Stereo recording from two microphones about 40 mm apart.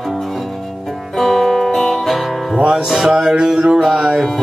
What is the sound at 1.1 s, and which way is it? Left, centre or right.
Music, centre.